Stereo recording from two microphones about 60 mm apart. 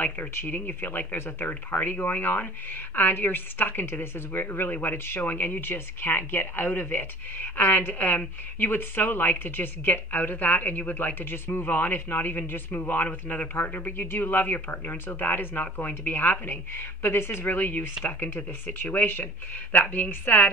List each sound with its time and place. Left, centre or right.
0.0 s a woman's voice: left